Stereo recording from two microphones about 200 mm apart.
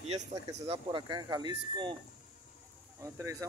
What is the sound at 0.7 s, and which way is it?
Speech, 20° right (ahead or behind).